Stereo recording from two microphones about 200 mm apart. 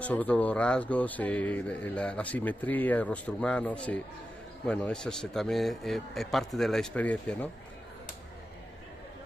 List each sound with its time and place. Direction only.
0.0 s a man's voice: 5° left (ahead or behind)